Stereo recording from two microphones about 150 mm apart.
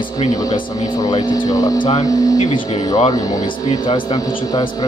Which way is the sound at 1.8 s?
40° left (ahead or behind).